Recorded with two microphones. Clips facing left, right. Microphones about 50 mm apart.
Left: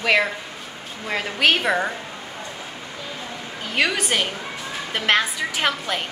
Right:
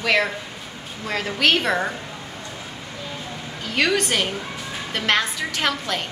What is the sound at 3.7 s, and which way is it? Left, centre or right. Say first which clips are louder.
A woman's voice: right 1 dB; centre.